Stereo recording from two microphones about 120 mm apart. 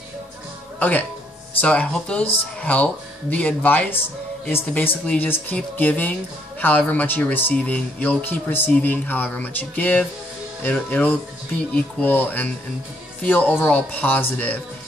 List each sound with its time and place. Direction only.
0.7 s speech: 15° left (ahead or behind)